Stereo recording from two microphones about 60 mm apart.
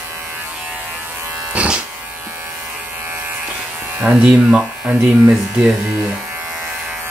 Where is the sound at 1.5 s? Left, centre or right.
Right.